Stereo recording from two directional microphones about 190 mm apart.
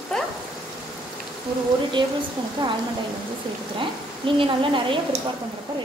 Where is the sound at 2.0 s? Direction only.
25° right (ahead or behind).